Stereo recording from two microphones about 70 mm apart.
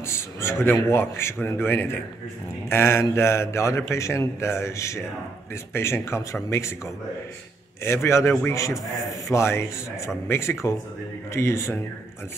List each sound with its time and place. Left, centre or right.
0.0 s speech: left
7.8 s speech: left